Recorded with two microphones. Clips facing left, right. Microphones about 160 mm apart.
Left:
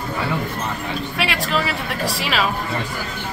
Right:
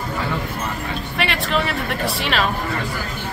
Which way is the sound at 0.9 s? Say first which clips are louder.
Even; centre (ahead or behind).